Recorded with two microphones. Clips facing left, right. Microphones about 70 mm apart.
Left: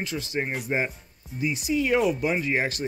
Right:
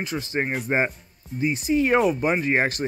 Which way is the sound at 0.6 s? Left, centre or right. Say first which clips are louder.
Right 4 dB; right.